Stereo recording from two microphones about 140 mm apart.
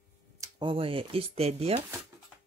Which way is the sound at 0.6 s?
40° right (ahead or behind).